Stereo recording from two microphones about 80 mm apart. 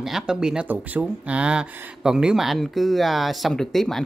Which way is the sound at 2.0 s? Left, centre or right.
Centre.